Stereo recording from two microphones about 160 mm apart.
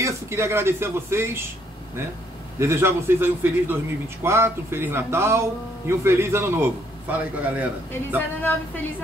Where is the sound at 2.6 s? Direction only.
15° right (ahead or behind).